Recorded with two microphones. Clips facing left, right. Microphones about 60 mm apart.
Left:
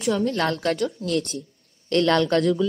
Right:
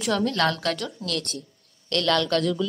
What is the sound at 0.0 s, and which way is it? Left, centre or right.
Speech, right.